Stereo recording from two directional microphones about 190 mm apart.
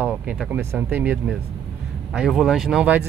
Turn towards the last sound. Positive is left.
turn(degrees=-5)  # may be behind; listen again after turning